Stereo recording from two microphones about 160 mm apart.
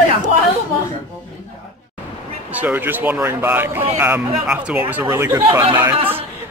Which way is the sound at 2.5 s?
10° right (ahead or behind).